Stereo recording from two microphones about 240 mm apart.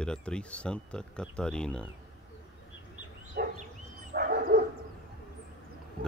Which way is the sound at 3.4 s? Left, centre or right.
Right.